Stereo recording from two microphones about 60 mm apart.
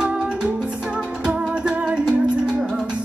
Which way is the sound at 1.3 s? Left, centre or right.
Centre.